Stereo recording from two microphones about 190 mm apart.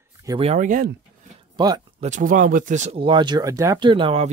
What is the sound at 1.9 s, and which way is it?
Speech, 40° right (ahead or behind).